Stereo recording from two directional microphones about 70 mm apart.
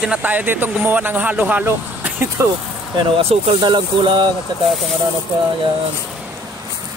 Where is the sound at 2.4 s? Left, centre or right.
Right.